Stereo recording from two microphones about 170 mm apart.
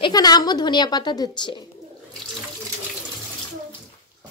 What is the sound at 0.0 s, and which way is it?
A woman's voice, 25° left (ahead or behind).